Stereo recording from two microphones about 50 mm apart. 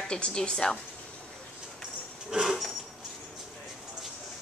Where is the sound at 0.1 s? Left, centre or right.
Centre.